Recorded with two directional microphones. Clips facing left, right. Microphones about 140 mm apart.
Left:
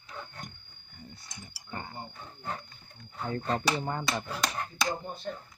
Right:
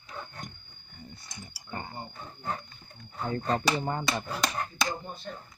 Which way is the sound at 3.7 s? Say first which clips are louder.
Right 2 dB; 5° right (ahead or behind).